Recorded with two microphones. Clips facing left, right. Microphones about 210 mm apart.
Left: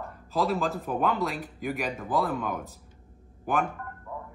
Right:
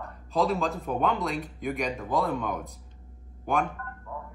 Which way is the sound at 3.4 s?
Centre (ahead or behind).